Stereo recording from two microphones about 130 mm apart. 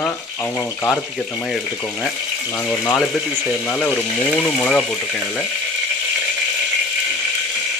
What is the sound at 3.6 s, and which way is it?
Speech, centre (ahead or behind).